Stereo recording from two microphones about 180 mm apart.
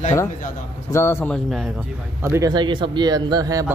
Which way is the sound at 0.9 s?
15° left (ahead or behind).